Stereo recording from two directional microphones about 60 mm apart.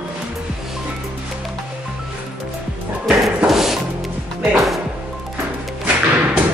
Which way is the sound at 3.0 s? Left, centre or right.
Centre.